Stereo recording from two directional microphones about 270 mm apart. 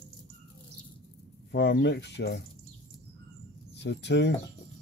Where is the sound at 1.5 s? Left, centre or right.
Left.